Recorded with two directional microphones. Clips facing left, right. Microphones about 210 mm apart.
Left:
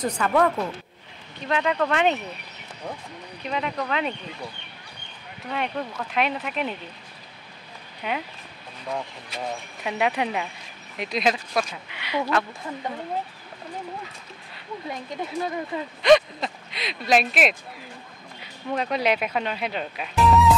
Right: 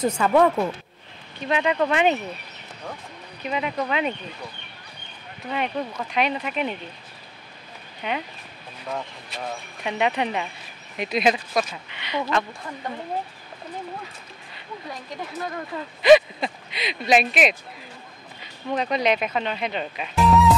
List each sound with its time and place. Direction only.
0.0 s speech: 25° right (ahead or behind)
1.5 s speech: 10° right (ahead or behind)
3.4 s speech: 5° right (ahead or behind)
5.5 s speech: 5° right (ahead or behind)
8.0 s speech: centre (ahead or behind)
15.3 s speech: 15° left (ahead or behind)
16.0 s speech: 5° right (ahead or behind)
18.7 s speech: 5° left (ahead or behind)